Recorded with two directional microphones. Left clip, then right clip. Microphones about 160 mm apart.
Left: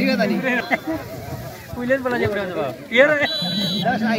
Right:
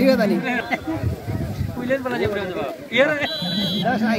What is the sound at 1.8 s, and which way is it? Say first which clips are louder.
A man's voice: left 2 dB; 25° left (ahead or behind).